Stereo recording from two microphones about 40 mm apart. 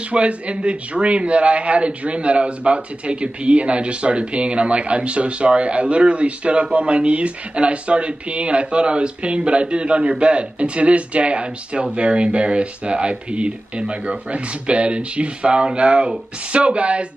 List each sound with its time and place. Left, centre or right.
0.1 s a man's voice: right